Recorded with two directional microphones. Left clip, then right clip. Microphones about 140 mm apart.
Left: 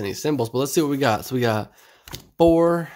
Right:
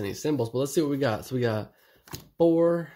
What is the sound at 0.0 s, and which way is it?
Speech, 20° left (ahead or behind).